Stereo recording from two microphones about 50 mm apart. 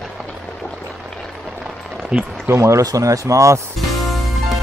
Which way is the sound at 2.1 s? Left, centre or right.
Centre.